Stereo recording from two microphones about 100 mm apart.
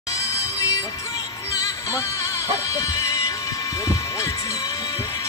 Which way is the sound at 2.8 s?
35° left (ahead or behind).